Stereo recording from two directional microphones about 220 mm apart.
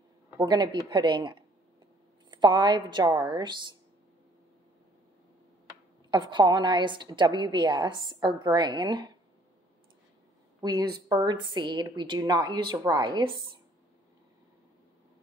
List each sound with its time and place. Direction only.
0.4 s a woman's voice: 20° right (ahead or behind)
6.0 s a woman's voice: 20° right (ahead or behind)
10.6 s a woman's voice: 20° right (ahead or behind)